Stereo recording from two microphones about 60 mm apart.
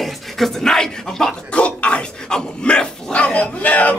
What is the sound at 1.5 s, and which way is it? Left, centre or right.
Speech, centre.